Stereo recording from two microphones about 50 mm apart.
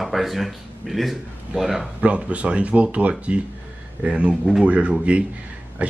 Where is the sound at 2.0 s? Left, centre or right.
Right.